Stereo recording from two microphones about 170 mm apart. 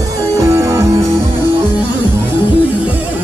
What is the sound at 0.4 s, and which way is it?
Music, 15° right (ahead or behind).